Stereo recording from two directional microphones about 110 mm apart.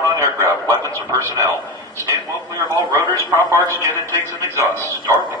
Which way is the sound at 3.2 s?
25° right (ahead or behind).